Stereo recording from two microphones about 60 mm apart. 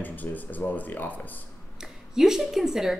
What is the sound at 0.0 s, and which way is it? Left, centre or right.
Speech, left.